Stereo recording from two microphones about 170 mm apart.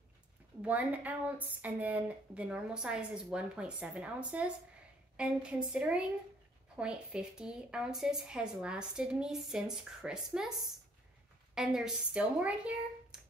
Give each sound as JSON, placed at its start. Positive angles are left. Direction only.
{"t": 0.6, "sound": "a woman's voice", "side_deg": -10}
{"t": 11.5, "sound": "speech", "side_deg": 0}